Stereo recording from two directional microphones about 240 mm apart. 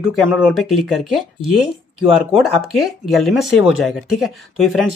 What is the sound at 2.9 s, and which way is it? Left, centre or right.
Speech, centre.